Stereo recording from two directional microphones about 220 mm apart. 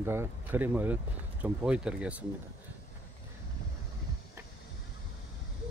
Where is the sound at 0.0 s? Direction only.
10° right (ahead or behind).